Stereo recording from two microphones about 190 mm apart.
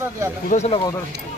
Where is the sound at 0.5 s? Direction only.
35° left (ahead or behind).